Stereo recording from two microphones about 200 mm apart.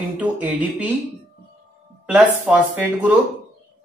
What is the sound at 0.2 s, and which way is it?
Speech, 5° right (ahead or behind).